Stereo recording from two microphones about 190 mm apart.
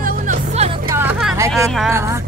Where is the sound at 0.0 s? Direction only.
45° right (ahead or behind).